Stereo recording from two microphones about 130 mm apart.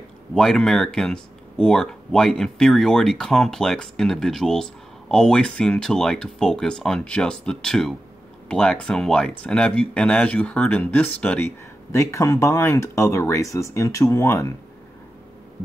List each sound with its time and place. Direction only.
0.3 s speech: 5° left (ahead or behind)
11.9 s speech: 25° left (ahead or behind)